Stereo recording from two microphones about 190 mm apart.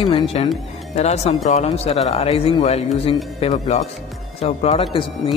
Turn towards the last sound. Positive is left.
turn(degrees=30)  # may be behind; listen again after turning